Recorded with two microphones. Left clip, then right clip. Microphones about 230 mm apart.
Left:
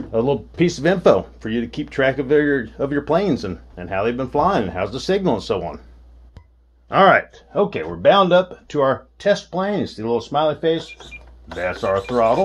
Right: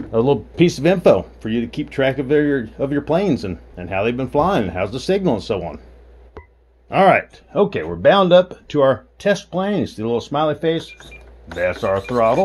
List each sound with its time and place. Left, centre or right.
0.1 s speech: right; by 5.8 s centre
6.9 s speech: centre
7.5 s speech: right